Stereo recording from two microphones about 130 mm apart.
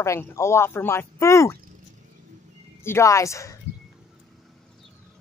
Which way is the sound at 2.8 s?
20° left (ahead or behind).